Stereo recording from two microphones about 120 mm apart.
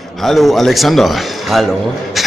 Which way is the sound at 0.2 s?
Centre (ahead or behind).